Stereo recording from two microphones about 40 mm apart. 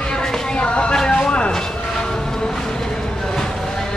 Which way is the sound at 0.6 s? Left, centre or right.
Left.